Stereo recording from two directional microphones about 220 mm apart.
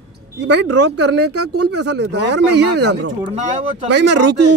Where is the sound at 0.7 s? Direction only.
90° right.